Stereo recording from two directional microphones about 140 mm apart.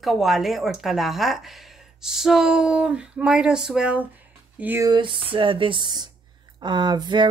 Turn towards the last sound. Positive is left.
turn(degrees=-30)  # may be behind; listen again after turning